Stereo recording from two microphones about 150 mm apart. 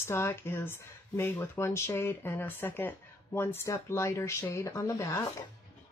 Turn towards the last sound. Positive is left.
turn(degrees=20)  # may be behind; listen again after turning